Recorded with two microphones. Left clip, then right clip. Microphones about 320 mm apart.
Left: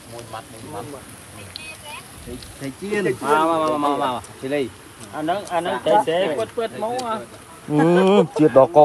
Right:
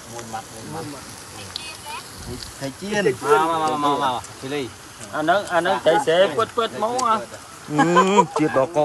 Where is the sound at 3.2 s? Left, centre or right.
Left.